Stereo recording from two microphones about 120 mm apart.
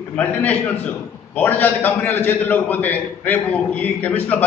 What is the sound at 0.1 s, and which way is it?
A man's voice, 15° left (ahead or behind).